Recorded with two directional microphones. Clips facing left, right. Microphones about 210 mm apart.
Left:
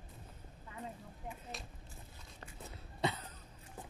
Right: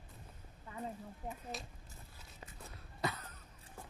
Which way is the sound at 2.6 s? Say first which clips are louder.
Left 3 dB; 25° left (ahead or behind).